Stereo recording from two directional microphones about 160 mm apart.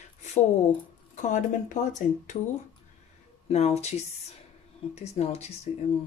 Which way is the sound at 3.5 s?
40° left (ahead or behind).